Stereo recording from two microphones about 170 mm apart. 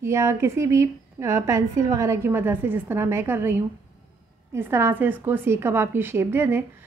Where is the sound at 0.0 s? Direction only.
15° right (ahead or behind).